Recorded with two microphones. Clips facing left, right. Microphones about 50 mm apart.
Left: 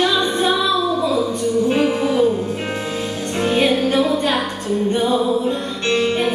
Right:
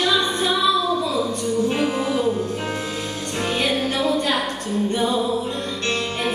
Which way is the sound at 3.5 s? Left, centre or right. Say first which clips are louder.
Left 6 dB; left.